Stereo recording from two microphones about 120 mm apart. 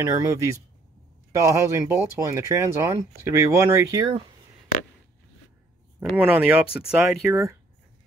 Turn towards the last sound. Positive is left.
turn(degrees=-25)  # may be behind; listen again after turning